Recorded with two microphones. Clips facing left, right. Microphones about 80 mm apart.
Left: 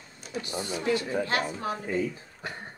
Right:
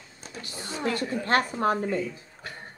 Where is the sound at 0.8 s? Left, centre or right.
Right.